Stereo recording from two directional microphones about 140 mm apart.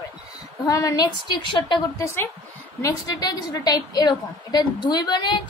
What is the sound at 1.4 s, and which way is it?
Speech, 35° left (ahead or behind).